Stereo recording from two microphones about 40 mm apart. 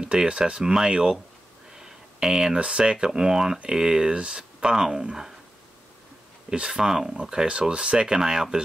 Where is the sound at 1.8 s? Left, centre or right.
Centre.